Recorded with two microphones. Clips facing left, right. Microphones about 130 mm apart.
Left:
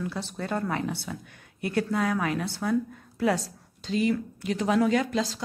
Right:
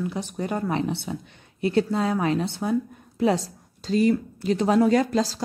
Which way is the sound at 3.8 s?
40° right (ahead or behind).